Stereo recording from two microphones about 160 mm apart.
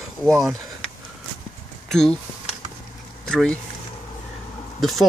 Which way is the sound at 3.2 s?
5° left (ahead or behind).